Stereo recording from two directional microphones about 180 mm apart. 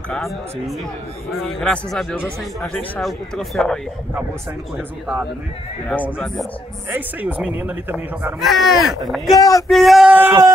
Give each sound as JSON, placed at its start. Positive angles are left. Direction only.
{"t": 0.1, "sound": "speech", "side_deg": 0}
{"t": 4.7, "sound": "speech", "side_deg": -10}
{"t": 6.1, "sound": "speech", "side_deg": 5}
{"t": 6.9, "sound": "speech", "side_deg": -10}
{"t": 9.3, "sound": "speech", "side_deg": 20}
{"t": 9.7, "sound": "speech", "side_deg": 0}